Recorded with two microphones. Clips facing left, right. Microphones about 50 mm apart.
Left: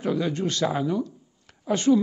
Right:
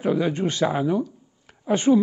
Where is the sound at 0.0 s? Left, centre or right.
Centre.